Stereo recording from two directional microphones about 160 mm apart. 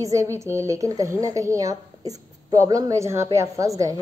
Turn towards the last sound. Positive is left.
turn(degrees=-20)  # may be behind; listen again after turning